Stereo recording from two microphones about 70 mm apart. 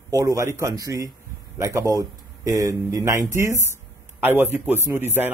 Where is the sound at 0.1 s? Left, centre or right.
Right.